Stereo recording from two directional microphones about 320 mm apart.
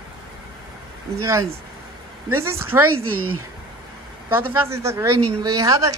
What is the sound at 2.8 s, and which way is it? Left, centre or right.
Speech, right.